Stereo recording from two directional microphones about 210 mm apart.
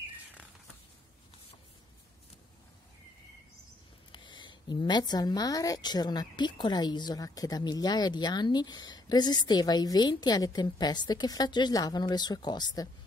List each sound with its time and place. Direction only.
4.1 s a woman's voice: 20° left (ahead or behind)